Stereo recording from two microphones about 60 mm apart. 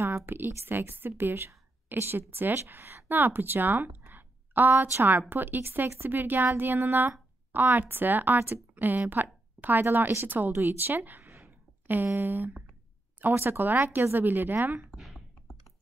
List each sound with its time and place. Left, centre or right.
0.0 s a woman's voice: right
10.5 s speech: right
11.2 s a sound: right
13.3 s speech: right
15.0 s computer keyboard: centre